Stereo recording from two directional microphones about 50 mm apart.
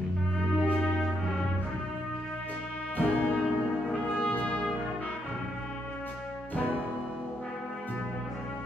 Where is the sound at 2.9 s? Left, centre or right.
Left.